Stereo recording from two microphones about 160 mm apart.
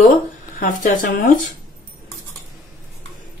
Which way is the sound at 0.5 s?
60° left (ahead or behind).